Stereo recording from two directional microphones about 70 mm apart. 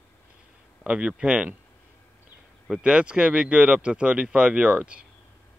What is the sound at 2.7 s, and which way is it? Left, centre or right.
Speech, centre.